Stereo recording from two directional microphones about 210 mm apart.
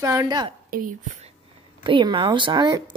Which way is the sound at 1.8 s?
20° right (ahead or behind).